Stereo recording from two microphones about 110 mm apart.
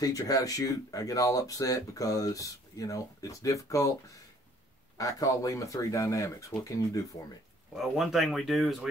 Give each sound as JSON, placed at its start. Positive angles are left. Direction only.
{"t": 0.0, "sound": "speech", "side_deg": 35}
{"t": 7.7, "sound": "speech", "side_deg": -5}